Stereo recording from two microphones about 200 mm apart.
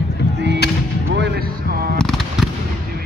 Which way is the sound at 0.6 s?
55° left (ahead or behind).